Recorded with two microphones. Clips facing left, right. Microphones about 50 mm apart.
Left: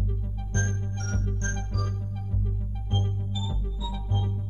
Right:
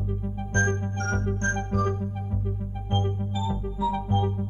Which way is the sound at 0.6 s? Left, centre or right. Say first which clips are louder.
Right 7 dB; right.